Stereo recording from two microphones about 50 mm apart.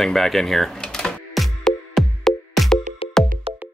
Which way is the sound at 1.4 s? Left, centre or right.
Centre.